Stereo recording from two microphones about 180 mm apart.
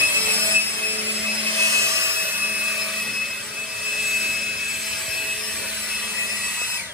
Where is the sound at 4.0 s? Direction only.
Centre (ahead or behind).